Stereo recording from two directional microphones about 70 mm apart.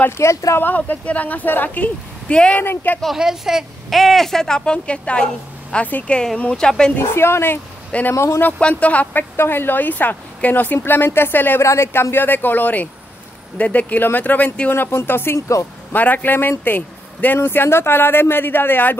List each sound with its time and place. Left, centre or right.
0.2 s speech: left
0.6 s speech: left
2.6 s speech: left
3.2 s speech: centre
7.0 s speech: left
8.4 s speech: left
9.4 s speech: left
11.6 s speech: left